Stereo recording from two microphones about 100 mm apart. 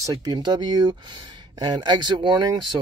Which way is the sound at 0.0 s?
40° right (ahead or behind).